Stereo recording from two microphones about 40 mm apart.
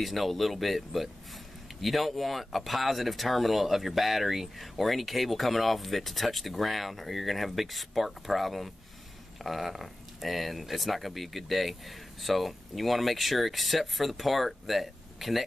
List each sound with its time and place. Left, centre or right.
0.0 s speech: centre